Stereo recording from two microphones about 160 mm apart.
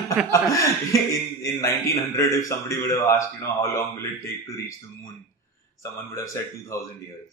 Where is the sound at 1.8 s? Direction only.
20° left (ahead or behind).